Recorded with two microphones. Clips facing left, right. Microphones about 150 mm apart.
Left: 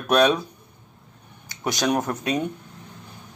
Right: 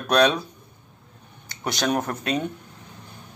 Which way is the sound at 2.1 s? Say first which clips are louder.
Left 1 dB; 15° left (ahead or behind).